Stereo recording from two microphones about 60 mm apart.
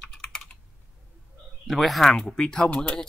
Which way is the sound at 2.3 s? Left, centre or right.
Centre.